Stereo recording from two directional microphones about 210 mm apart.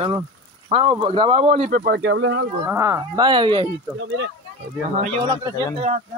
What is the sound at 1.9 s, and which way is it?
Speech, 55° right (ahead or behind).